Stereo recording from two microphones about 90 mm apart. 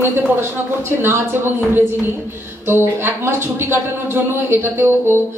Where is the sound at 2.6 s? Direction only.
25° right (ahead or behind).